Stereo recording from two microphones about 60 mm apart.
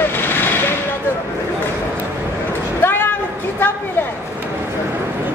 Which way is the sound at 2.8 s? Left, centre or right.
Left.